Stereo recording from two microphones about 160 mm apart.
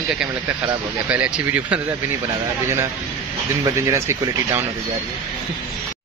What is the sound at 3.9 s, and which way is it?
Speech, 15° right (ahead or behind).